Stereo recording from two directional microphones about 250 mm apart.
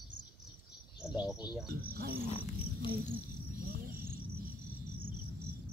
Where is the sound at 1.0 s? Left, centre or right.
Centre.